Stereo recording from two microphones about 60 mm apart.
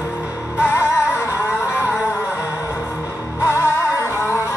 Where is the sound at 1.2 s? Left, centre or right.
Left.